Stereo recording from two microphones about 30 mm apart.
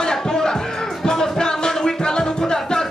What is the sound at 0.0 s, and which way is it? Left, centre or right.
Music, left.